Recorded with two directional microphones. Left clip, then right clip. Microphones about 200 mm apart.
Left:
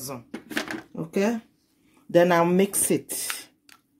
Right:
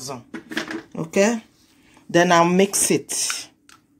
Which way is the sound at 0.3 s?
60° left (ahead or behind).